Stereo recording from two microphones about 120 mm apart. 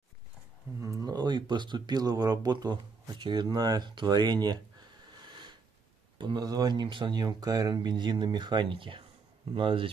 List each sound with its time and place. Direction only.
0.7 s speech: 25° right (ahead or behind)
5.2 s a sound: 40° right (ahead or behind)
6.1 s speech: 35° right (ahead or behind)